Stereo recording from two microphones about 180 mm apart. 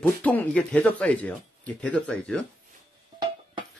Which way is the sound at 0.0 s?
10° left (ahead or behind).